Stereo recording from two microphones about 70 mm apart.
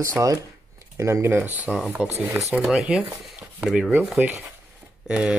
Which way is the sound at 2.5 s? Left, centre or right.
Centre.